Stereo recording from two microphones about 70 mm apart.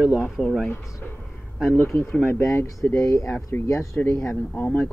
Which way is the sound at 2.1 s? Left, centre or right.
Left.